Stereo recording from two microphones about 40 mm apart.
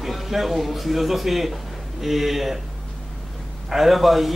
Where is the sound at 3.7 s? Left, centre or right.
Centre.